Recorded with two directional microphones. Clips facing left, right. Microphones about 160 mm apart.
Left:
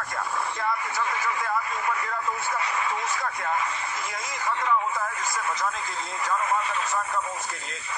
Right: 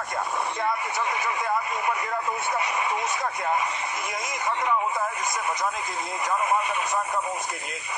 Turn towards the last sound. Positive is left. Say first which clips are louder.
# right 2 dB
turn(degrees=-15)  # may be behind; listen again after turning